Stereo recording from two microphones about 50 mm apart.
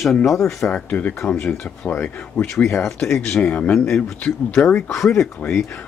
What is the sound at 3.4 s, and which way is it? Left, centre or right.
Speech, left.